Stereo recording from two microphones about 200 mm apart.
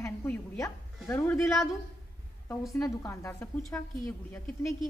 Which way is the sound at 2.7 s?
15° left (ahead or behind).